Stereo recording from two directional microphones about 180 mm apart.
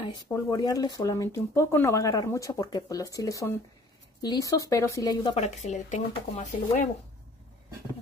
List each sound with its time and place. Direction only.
0.3 s speech: 20° left (ahead or behind)
5.3 s speech: 40° left (ahead or behind)